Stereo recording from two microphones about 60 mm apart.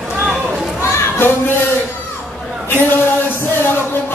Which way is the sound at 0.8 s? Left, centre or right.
Left.